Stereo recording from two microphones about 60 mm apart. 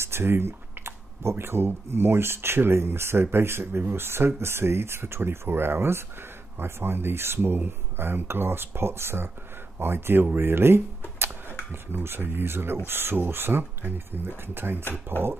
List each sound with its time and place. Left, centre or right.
0.0 s speech: right